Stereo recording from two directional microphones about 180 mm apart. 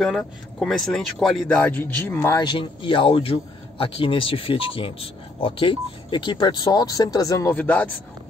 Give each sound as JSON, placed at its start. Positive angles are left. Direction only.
{"t": 0.0, "sound": "speech", "side_deg": 5}